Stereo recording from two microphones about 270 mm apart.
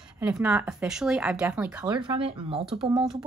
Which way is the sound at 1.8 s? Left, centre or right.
Centre.